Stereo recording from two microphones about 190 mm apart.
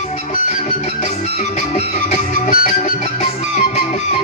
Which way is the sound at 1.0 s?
40° left (ahead or behind).